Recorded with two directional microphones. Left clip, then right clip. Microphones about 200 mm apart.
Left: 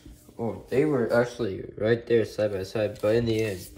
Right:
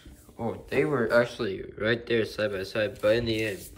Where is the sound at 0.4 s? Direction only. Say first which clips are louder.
Left 2 dB; 15° left (ahead or behind).